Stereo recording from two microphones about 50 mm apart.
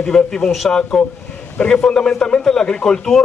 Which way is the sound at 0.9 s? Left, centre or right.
Centre.